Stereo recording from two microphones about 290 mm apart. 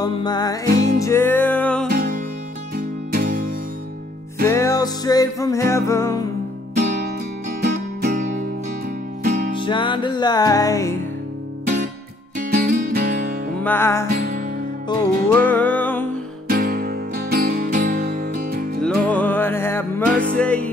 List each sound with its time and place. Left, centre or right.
0.0 s music: centre
1.9 s music: right
4.5 s music: centre
7.6 s music: right
9.6 s music: centre
12.4 s music: right
13.7 s music: centre
16.4 s music: right
18.8 s music: centre